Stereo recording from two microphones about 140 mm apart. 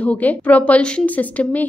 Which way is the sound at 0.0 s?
10° left (ahead or behind).